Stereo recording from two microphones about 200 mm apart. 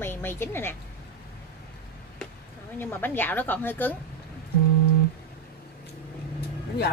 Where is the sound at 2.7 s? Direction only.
10° left (ahead or behind).